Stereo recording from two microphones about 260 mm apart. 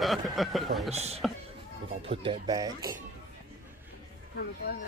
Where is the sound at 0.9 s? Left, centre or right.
Right.